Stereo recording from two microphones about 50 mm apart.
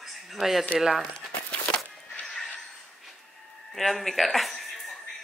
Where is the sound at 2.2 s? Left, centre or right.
Centre.